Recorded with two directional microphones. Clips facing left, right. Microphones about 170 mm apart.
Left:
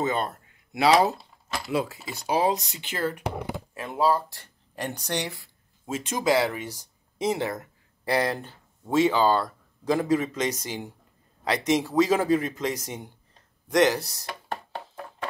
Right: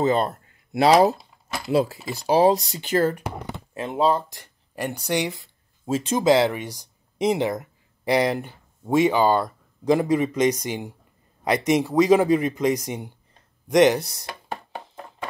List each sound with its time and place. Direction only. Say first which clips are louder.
0.0 s speech: right 6 dB; 30° right (ahead or behind)
3.7 s speech: right 3 dB; 25° right (ahead or behind)
5.9 s speech: right 6 dB; 30° right (ahead or behind)